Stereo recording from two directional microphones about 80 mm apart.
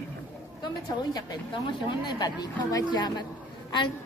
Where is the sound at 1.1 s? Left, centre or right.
Left.